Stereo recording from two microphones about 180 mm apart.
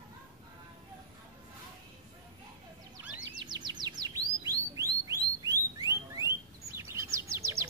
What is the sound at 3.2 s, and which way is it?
Chirp, 25° right (ahead or behind).